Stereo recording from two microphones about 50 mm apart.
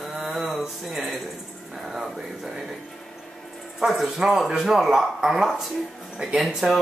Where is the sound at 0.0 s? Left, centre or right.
Centre.